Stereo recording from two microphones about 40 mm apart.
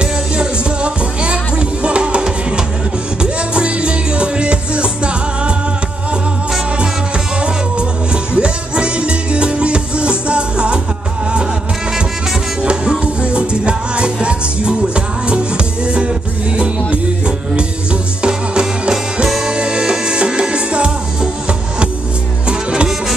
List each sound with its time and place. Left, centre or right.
0.0 s music: right
8.1 s music: right
13.0 s music: right
18.2 s music: right
22.5 s music: right